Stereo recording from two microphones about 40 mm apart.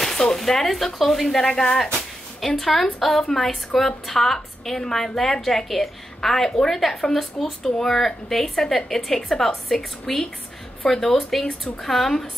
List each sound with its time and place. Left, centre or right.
0.0 s speech: centre
1.4 s a woman's voice: centre
2.4 s a woman's voice: centre